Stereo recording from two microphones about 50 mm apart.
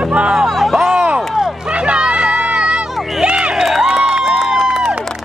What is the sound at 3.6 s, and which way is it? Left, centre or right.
Crowd, centre.